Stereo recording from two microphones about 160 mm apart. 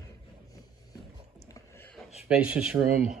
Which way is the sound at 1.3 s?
20° left (ahead or behind).